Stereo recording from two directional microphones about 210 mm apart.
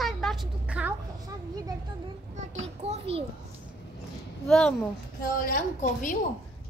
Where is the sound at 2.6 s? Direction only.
30° right (ahead or behind).